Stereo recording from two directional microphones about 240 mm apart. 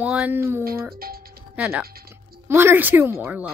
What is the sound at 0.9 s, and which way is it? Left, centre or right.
Music, right.